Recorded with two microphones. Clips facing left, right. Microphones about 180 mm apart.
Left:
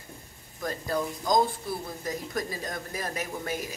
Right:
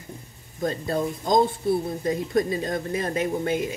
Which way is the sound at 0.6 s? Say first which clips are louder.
Right 5 dB; 25° right (ahead or behind).